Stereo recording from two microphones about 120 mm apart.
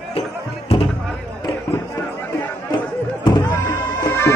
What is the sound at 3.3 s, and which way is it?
Bagpipes, 30° left (ahead or behind).